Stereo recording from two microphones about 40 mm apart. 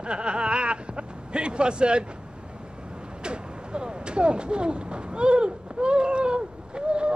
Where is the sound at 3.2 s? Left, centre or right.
Right.